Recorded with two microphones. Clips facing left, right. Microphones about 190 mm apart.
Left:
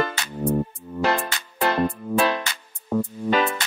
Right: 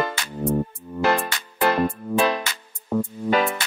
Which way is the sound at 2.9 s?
5° right (ahead or behind).